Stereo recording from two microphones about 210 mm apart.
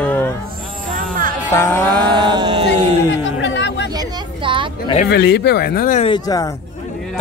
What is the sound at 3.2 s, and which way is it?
Chatter, 60° left (ahead or behind).